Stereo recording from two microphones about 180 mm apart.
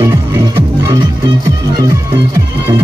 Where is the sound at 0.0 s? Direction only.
15° right (ahead or behind).